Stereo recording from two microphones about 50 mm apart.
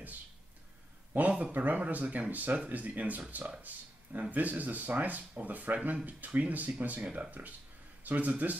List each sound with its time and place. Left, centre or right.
1.1 s speech: right